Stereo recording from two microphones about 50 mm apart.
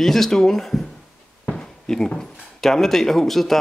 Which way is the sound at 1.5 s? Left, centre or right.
Centre.